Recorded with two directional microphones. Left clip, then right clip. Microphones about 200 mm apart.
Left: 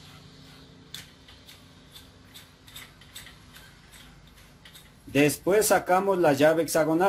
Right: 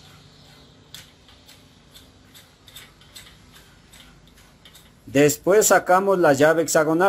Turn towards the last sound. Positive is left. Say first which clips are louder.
# right 5 dB
turn(degrees=-20)  # may be behind; listen again after turning